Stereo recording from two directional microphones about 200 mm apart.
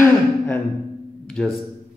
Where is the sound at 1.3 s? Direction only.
Centre (ahead or behind).